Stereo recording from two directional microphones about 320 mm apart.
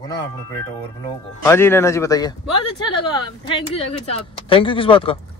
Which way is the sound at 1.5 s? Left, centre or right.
Centre.